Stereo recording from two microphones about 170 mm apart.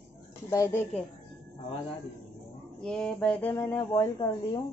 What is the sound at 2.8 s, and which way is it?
Speech, 5° left (ahead or behind).